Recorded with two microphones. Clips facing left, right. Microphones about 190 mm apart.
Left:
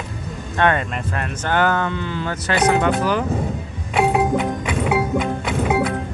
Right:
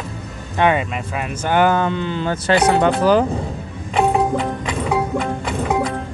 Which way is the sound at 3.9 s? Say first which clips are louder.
Right 1 dB; 5° left (ahead or behind).